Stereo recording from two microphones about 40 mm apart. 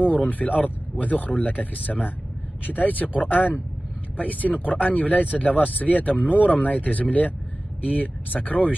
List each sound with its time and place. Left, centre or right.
0.0 s speech: left